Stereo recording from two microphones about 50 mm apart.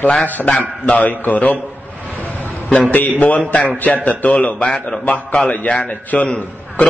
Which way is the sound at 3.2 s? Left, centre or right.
Left.